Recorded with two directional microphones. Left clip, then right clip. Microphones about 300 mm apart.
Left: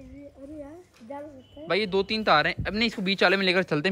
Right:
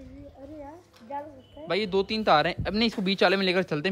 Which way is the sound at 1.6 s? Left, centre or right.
Centre.